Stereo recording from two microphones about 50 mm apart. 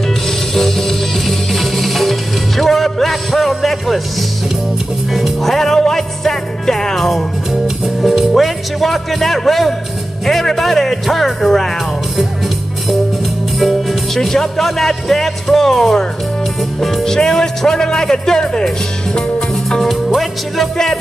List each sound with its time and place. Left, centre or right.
0.6 s music: centre
5.1 s music: centre
10.2 s speech: centre
13.6 s speech: centre
19.1 s music: centre
19.8 s music: centre